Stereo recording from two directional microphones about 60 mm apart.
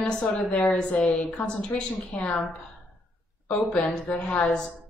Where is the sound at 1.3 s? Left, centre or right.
Centre.